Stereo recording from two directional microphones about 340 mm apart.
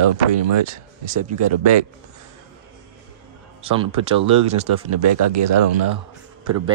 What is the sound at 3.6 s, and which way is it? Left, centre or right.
Speech, centre.